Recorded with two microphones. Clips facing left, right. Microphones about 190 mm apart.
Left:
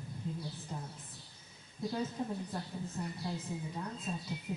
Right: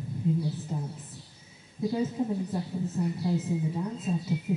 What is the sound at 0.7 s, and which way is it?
Speech, 5° right (ahead or behind).